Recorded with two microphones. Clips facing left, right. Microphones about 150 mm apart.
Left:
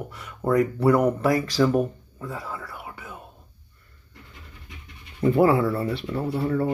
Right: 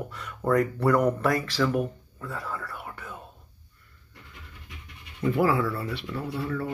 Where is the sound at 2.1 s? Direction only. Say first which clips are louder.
Left 1 dB; 15° left (ahead or behind).